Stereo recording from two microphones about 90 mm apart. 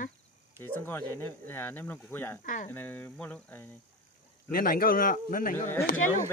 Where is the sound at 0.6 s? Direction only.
25° left (ahead or behind).